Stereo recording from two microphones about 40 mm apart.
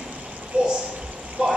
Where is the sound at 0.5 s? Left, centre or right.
Right.